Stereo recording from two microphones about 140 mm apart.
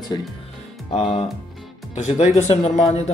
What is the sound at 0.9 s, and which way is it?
Speech, 40° left (ahead or behind).